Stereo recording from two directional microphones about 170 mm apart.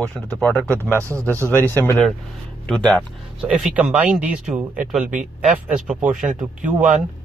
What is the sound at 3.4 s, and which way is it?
Speech, 5° right (ahead or behind).